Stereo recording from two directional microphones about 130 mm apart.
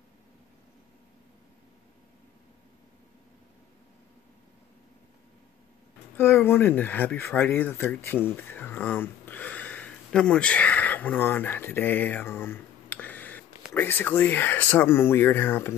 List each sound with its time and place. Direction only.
6.1 s speech: 15° left (ahead or behind)